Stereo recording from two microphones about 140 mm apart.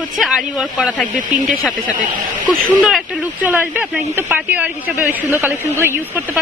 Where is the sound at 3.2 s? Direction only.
10° right (ahead or behind).